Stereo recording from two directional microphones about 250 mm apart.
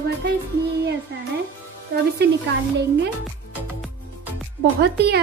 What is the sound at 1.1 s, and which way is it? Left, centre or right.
Speech, right.